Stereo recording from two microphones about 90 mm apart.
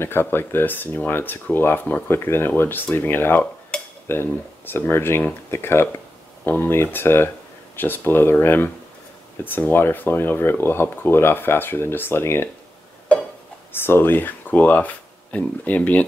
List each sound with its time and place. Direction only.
0.0 s speech: 25° left (ahead or behind)
3.7 s dishes: 10° left (ahead or behind)
4.1 s speech: 25° left (ahead or behind)
13.7 s speech: 25° left (ahead or behind)